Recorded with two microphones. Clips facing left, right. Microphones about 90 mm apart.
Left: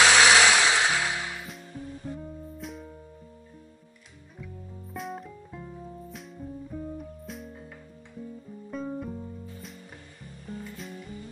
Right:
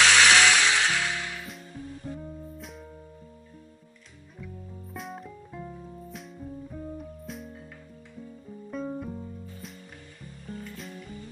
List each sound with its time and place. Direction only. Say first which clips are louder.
0.0 s music: left 1 dB; 5° left (ahead or behind)
4.9 s music: left 3 dB; centre (ahead or behind)
8.6 s music: even; centre (ahead or behind)